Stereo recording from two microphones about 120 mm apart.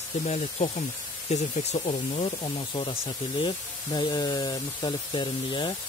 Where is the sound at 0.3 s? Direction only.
70° left (ahead or behind).